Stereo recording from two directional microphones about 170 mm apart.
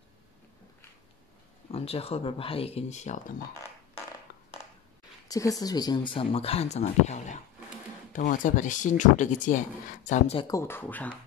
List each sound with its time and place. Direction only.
1.7 s speech: 35° left (ahead or behind)
5.3 s speech: 20° left (ahead or behind); by 10.3 s 45° left (ahead or behind)
10.4 s speech: 20° left (ahead or behind)